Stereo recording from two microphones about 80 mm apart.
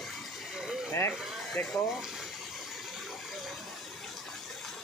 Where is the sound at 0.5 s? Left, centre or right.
Centre.